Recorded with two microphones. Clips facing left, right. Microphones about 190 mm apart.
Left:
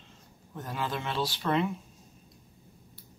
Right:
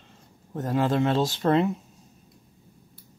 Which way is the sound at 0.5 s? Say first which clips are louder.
Right 11 dB; 45° right (ahead or behind).